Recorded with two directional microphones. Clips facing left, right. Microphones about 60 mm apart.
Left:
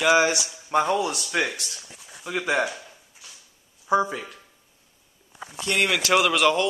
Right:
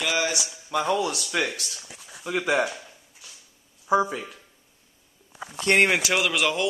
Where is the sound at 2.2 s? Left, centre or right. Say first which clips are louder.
Right 1 dB; centre.